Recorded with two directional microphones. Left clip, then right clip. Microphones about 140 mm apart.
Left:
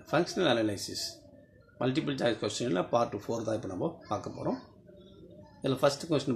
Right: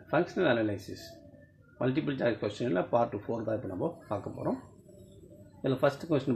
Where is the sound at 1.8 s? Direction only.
5° right (ahead or behind).